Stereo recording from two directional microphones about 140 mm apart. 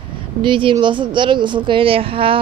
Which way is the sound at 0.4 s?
35° right (ahead or behind).